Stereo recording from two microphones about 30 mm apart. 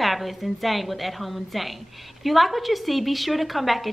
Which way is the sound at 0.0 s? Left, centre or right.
Centre.